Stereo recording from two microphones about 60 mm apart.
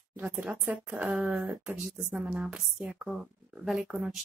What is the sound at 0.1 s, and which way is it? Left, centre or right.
Speech, right.